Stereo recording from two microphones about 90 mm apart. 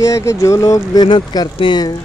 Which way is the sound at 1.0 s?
55° left (ahead or behind).